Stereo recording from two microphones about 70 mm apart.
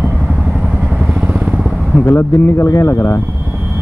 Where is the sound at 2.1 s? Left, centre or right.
Left.